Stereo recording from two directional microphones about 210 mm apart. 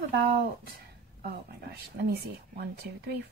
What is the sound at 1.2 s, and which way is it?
Speech, 50° right (ahead or behind).